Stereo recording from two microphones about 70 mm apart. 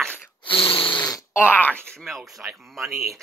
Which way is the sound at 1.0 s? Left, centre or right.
Left.